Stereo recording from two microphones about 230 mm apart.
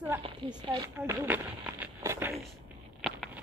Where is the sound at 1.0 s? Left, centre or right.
Centre.